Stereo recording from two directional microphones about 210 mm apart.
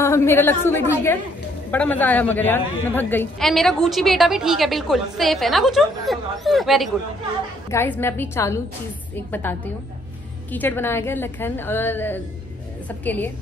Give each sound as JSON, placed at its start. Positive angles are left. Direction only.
{"t": 0.0, "sound": "a woman's voice", "side_deg": 10}
{"t": 7.7, "sound": "a woman's voice", "side_deg": 10}